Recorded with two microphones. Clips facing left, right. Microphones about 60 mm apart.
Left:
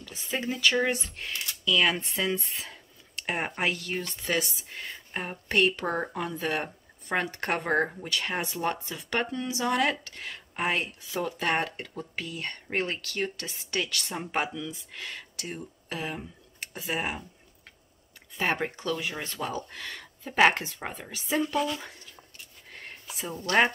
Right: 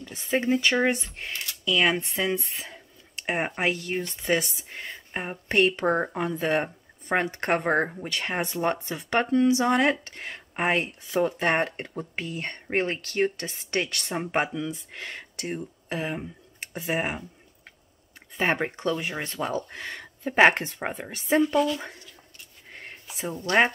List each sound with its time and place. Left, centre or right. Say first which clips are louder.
0.1 s speech: right 8 dB; right
18.4 s speech: right 3 dB; right
22.7 s a sound: right 1 dB; centre